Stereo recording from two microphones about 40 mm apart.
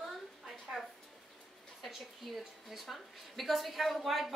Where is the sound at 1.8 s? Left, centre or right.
Centre.